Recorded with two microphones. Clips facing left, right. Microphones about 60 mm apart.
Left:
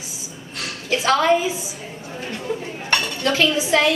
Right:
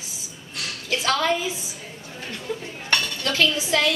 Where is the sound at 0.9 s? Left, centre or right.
Left.